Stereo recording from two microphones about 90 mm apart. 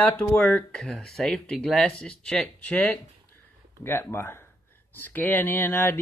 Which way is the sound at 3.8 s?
25° left (ahead or behind).